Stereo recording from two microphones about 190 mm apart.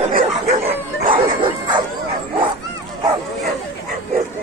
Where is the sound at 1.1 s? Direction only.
25° right (ahead or behind).